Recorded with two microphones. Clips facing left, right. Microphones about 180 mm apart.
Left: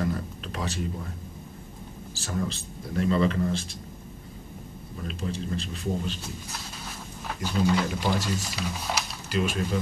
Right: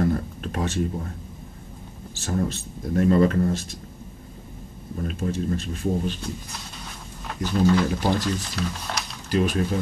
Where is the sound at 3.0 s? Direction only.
50° right (ahead or behind).